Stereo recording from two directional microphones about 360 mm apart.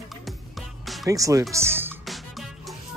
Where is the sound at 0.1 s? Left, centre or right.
Centre.